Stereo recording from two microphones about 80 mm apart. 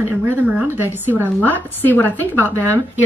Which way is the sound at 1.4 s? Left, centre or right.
Left.